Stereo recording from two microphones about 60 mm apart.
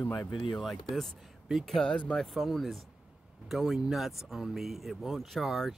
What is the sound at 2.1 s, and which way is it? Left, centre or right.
Speech, centre.